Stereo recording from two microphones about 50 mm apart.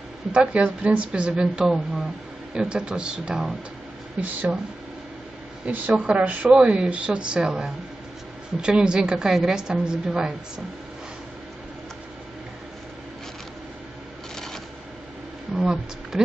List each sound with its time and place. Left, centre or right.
0.3 s a woman's voice: right
4.2 s speech: right
5.7 s a woman's voice: right; by 10.3 s centre
14.3 s a sound: centre
15.5 s speech: centre